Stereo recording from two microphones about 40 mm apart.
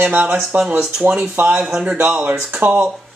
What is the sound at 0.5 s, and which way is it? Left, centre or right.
Speech, right.